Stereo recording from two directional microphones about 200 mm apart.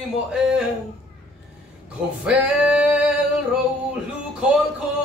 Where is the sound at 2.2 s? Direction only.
5° right (ahead or behind).